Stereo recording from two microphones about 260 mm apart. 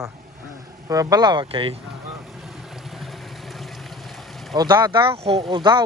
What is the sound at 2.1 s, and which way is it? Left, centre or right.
Vehicle, centre.